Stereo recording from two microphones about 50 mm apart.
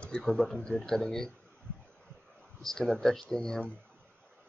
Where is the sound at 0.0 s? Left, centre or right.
Centre.